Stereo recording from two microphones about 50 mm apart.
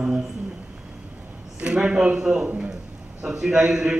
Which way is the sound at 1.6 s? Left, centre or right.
Centre.